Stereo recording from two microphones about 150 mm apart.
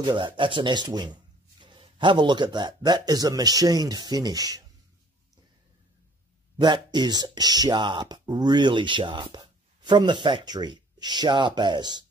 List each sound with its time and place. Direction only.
0.0 s speech: 30° right (ahead or behind)
6.6 s speech: 30° right (ahead or behind)